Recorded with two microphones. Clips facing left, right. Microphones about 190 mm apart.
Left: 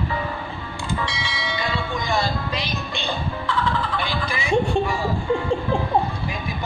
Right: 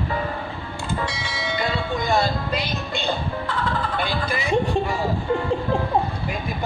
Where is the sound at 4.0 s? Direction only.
55° right (ahead or behind).